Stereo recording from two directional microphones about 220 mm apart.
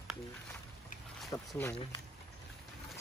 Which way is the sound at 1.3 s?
15° left (ahead or behind).